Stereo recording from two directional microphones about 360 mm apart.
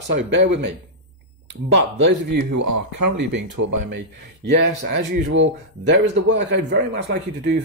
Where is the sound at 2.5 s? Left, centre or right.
Right.